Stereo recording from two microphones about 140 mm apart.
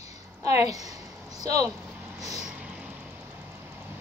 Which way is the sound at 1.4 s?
25° right (ahead or behind).